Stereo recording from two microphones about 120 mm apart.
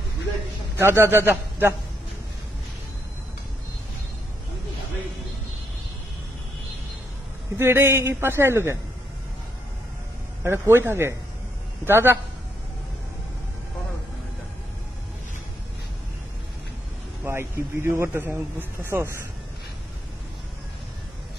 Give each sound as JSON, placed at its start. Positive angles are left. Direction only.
{"t": 0.7, "sound": "speech", "side_deg": -20}
{"t": 7.5, "sound": "speech", "side_deg": -20}
{"t": 10.4, "sound": "speech", "side_deg": -20}
{"t": 17.2, "sound": "speech", "side_deg": -20}